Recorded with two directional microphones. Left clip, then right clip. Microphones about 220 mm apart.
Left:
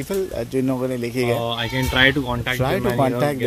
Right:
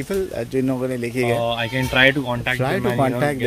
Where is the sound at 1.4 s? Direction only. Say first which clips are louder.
Right 2 dB; 25° right (ahead or behind).